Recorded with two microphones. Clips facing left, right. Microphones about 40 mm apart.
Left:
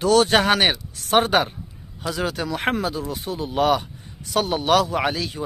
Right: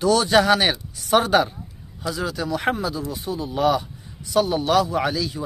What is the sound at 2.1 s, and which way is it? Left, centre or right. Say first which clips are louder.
A man's voice: even; left.